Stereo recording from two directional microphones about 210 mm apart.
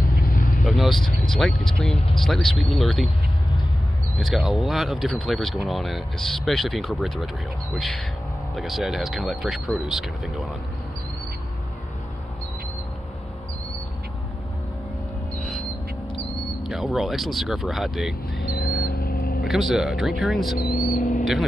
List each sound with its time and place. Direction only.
0.2 s vehicle: 40° left (ahead or behind)
0.7 s vehicle: centre (ahead or behind)
1.3 s speech: 5° left (ahead or behind)
4.2 s speech: centre (ahead or behind)
8.5 s speech: centre (ahead or behind)
15.3 s a sound: 5° left (ahead or behind)
16.6 s speech: centre (ahead or behind)
18.6 s a sound: 50° left (ahead or behind)
19.4 s speech: centre (ahead or behind)
20.5 s vehicle: 45° left (ahead or behind)
21.2 s mouse: centre (ahead or behind)